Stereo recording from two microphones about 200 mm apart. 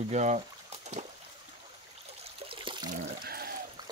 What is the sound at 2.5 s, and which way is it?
Water, 25° right (ahead or behind).